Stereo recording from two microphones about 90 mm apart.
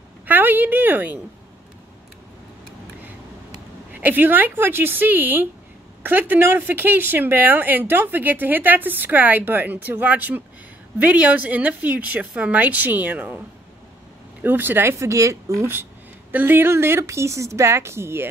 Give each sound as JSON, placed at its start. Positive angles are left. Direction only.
{"t": 0.3, "sound": "a sound", "side_deg": -20}
{"t": 3.9, "sound": "speech", "side_deg": -20}
{"t": 14.4, "sound": "speech", "side_deg": -20}